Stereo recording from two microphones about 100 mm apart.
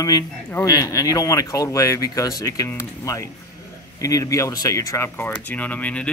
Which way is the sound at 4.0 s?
35° left (ahead or behind).